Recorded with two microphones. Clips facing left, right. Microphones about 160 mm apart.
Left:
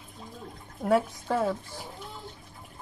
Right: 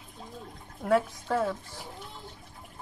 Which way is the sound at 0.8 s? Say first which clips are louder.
Left 1 dB; 10° left (ahead or behind).